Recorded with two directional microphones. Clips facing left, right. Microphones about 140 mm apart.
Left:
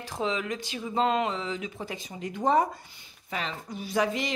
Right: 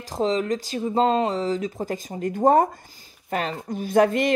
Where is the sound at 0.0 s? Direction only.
40° right (ahead or behind).